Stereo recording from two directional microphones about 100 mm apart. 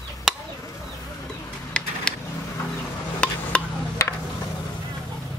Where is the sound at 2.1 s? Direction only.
10° left (ahead or behind).